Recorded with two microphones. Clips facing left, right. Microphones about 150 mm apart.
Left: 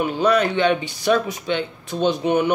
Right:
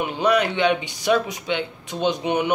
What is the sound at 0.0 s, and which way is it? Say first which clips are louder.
Speech: left 2 dB; 20° right (ahead or behind).